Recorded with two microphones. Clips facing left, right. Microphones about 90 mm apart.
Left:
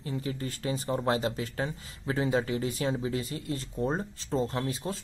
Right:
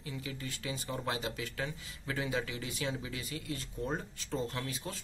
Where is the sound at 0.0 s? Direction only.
40° left (ahead or behind).